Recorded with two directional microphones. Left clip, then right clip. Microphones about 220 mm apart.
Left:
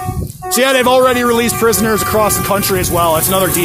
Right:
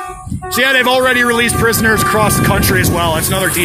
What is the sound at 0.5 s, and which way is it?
A man's voice, 20° left (ahead or behind).